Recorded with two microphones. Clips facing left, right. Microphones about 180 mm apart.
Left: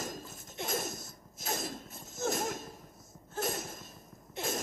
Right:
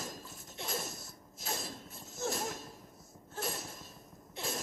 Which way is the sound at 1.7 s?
20° left (ahead or behind).